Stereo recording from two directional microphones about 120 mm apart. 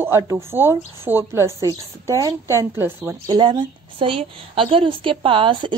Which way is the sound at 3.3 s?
40° right (ahead or behind).